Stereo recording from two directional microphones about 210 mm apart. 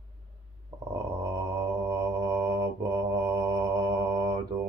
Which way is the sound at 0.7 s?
15° right (ahead or behind).